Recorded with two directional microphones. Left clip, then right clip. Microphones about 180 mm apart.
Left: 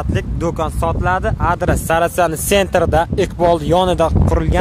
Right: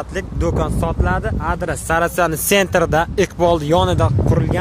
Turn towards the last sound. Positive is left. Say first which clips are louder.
# left 1 dB
turn(degrees=25)  # may be behind; listen again after turning